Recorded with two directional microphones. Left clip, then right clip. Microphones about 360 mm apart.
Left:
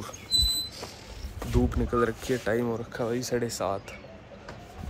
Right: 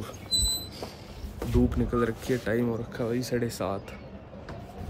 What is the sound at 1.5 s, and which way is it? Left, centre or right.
Speech, centre.